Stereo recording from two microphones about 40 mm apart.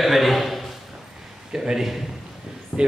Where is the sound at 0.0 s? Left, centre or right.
Centre.